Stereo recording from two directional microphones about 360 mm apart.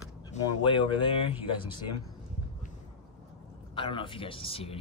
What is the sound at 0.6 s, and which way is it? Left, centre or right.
Speech, centre.